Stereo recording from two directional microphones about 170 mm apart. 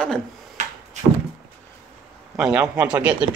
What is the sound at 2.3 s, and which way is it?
Speech, 5° right (ahead or behind).